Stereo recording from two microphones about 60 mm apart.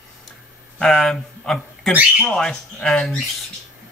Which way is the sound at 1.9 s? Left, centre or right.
Right.